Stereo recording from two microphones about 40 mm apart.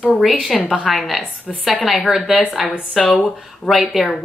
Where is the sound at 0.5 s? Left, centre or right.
Centre.